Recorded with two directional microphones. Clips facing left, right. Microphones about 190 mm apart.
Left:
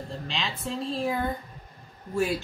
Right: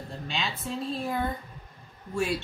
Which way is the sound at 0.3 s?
Centre (ahead or behind).